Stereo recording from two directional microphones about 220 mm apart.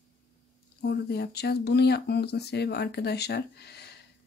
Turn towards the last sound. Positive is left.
turn(degrees=50)  # may be behind; listen again after turning